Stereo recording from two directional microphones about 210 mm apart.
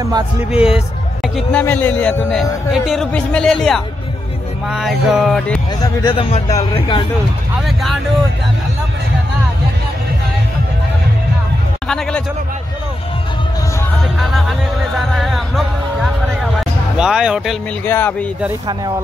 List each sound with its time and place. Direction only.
0.5 s speech: 5° right (ahead or behind)
5.8 s speech: 20° left (ahead or behind)
7.6 s speech: centre (ahead or behind)
11.9 s speech: 5° left (ahead or behind)
15.0 s music: centre (ahead or behind)
16.9 s speech: 5° right (ahead or behind)
17.8 s speech: 10° left (ahead or behind)